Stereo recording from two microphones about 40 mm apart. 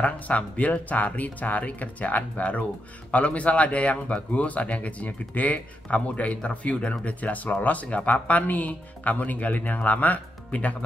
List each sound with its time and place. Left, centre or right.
0.0 s speech: left